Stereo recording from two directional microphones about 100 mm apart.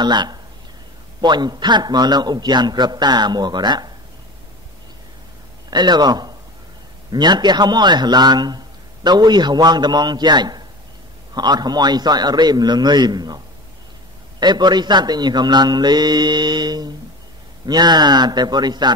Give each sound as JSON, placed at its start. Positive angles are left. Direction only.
{"t": 0.0, "sound": "a man's voice", "side_deg": -45}
{"t": 5.7, "sound": "a man's voice", "side_deg": -45}
{"t": 14.4, "sound": "a man's voice", "side_deg": -45}